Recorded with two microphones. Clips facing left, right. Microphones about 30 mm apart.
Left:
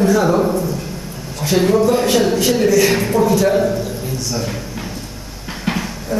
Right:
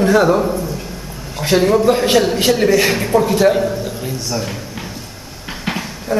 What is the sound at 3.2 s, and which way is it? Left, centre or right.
Speech, right.